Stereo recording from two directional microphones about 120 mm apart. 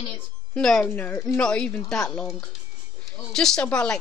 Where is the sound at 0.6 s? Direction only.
5° left (ahead or behind).